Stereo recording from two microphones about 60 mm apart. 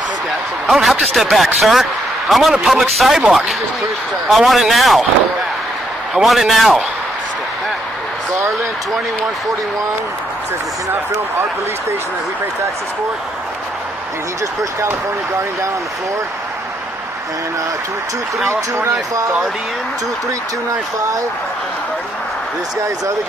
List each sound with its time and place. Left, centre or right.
0.7 s speech: centre
6.2 s speech: centre
18.5 s speech: right